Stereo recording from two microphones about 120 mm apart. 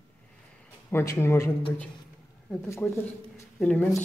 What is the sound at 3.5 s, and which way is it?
Speech, 10° left (ahead or behind).